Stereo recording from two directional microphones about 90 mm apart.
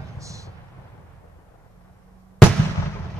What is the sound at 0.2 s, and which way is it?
Vehicle, 35° right (ahead or behind).